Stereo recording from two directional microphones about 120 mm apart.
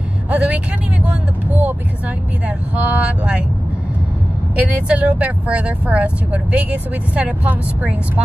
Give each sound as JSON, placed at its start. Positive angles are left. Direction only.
{"t": 0.3, "sound": "speech", "side_deg": -10}
{"t": 4.6, "sound": "speech", "side_deg": -15}